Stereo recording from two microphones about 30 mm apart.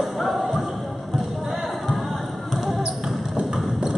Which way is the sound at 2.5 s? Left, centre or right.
Centre.